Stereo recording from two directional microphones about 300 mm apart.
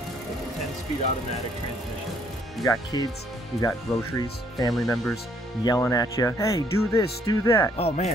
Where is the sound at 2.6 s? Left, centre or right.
Centre.